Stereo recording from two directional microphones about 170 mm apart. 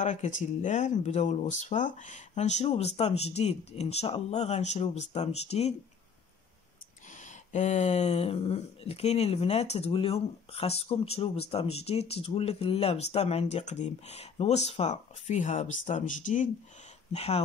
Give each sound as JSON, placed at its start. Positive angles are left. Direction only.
{"t": 0.0, "sound": "speech", "side_deg": 45}
{"t": 7.1, "sound": "speech", "side_deg": 45}
{"t": 17.1, "sound": "speech", "side_deg": 35}